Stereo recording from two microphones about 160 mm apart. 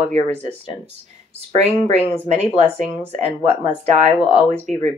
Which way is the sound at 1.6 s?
45° right (ahead or behind).